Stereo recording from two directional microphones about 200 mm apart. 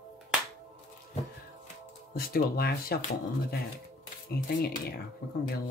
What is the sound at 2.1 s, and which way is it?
Speech, 50° left (ahead or behind).